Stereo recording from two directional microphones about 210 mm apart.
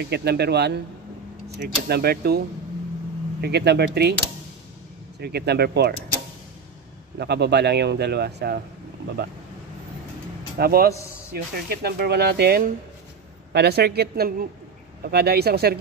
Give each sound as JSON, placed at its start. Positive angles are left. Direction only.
{"t": 0.0, "sound": "speech", "side_deg": -50}
{"t": 5.2, "sound": "speech", "side_deg": -50}
{"t": 7.2, "sound": "speech", "side_deg": -50}
{"t": 10.6, "sound": "speech", "side_deg": -45}